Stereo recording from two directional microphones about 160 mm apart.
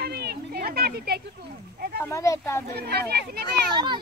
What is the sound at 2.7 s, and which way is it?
Speech, 80° right.